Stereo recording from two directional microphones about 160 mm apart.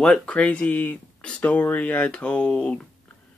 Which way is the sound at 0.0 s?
5° left (ahead or behind).